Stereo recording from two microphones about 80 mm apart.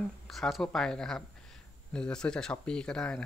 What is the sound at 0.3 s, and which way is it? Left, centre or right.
Speech, centre.